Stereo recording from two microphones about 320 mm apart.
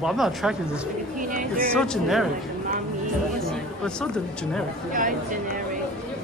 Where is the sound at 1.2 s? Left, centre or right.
Right.